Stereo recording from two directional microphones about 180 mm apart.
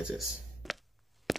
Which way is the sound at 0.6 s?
Centre (ahead or behind).